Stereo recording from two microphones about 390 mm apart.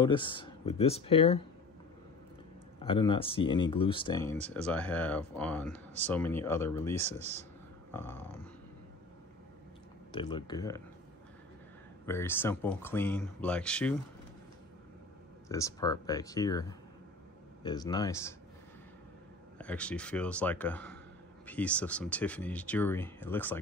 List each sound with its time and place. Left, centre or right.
0.0 s speech: centre
2.8 s speech: centre
7.0 s speech: centre
7.9 s speech: centre
10.1 s speech: centre
12.1 s speech: centre
15.4 s speech: centre
19.6 s speech: centre